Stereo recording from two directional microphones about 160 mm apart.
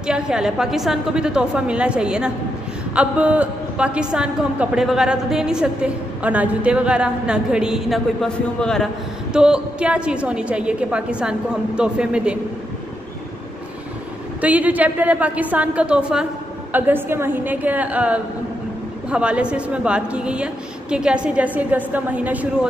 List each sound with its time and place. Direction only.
0.0 s a woman's voice: 5° right (ahead or behind)
14.4 s a woman's voice: 10° right (ahead or behind)